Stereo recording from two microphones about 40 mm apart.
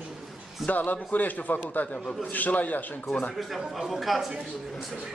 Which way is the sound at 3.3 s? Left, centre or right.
Centre.